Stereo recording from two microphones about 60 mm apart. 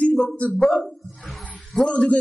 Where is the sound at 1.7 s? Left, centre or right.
Centre.